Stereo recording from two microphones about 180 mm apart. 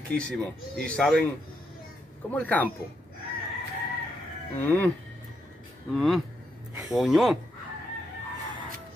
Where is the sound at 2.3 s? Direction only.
10° left (ahead or behind).